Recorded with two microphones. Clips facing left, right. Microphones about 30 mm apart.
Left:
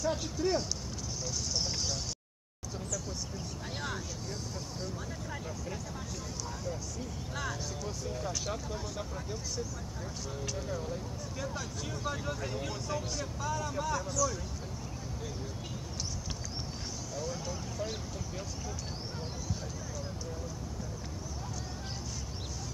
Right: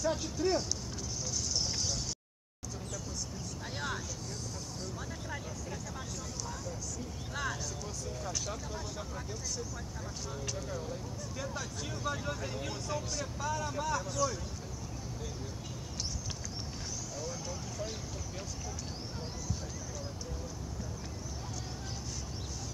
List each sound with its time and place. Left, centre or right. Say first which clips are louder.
0.0 s speech: even; centre
1.5 s a sound: left 1 dB; centre
7.3 s speech: right 1 dB; centre
8.0 s speech: left 1 dB; centre
10.4 s speech: left 3 dB; centre